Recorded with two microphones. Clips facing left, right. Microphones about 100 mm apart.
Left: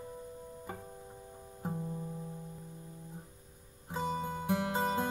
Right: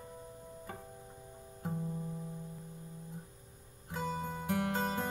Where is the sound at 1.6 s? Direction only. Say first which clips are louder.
Even; 10° left (ahead or behind).